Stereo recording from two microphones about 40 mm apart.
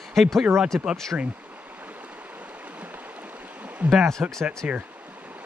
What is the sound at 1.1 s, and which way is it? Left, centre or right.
Speech, right.